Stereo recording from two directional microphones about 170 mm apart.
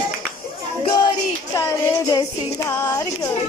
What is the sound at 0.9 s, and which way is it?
Music, 20° left (ahead or behind).